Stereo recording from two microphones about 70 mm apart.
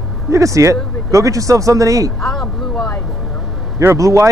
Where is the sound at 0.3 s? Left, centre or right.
Right.